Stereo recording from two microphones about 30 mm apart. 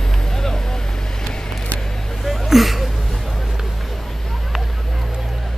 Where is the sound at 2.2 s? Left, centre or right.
Centre.